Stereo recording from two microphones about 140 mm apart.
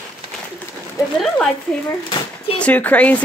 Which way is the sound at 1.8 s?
35° left (ahead or behind).